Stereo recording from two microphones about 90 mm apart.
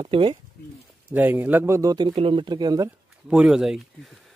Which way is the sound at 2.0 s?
55° right (ahead or behind).